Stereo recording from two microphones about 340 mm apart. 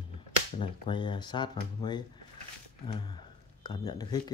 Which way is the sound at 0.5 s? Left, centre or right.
Centre.